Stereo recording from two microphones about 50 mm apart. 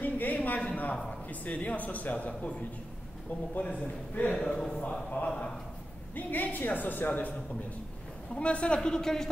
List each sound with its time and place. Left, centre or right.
0.0 s a sound: left
1.3 s speech: left
3.5 s speech: left
4.4 s speech: centre
5.2 s speech: left
8.4 s speech: left